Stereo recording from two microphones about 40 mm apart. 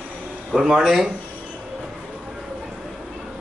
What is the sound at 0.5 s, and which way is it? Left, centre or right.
Speech, centre.